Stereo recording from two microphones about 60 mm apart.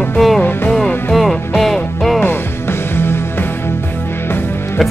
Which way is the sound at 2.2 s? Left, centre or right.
Left.